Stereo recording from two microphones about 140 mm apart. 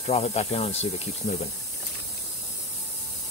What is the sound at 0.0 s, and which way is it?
Speech, 50° left (ahead or behind).